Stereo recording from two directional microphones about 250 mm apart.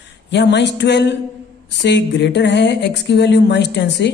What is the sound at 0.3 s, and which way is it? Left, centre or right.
Speech, left.